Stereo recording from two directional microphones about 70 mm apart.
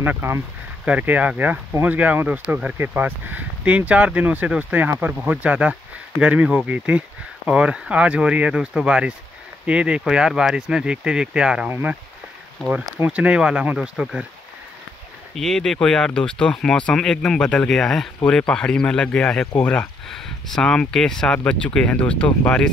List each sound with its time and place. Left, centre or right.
0.0 s speech: right
0.8 s speech: right
13.0 s speech: centre
15.3 s speech: centre; by 19.9 s left
20.1 s speech: centre